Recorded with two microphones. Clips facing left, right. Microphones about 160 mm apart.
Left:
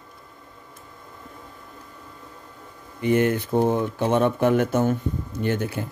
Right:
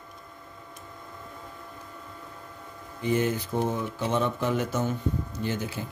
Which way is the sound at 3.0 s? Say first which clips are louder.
Left 6 dB; 65° left (ahead or behind).